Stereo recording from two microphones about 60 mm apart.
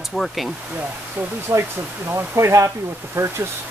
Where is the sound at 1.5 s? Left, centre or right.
Right.